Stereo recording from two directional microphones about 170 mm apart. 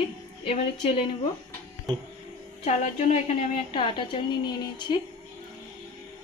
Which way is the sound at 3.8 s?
30° left (ahead or behind).